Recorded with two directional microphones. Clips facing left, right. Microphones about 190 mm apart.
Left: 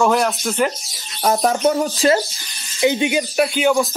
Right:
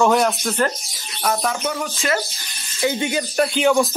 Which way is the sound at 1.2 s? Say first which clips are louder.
Left 6 dB; 35° left (ahead or behind).